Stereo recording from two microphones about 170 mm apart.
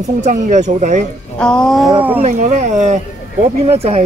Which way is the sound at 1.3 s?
5° left (ahead or behind).